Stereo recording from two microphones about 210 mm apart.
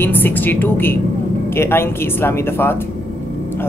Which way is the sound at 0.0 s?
10° left (ahead or behind).